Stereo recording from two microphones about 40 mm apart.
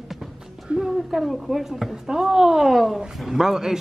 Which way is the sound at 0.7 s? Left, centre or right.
Right.